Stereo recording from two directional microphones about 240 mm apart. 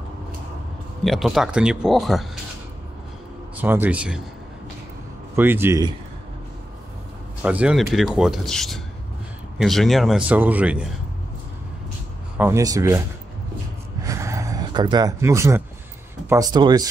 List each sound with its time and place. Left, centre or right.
1.0 s speech: centre
3.6 s speech: centre
5.3 s speech: centre
7.4 s speech: centre
12.4 s speech: centre
14.0 s a sound: centre
16.3 s speech: centre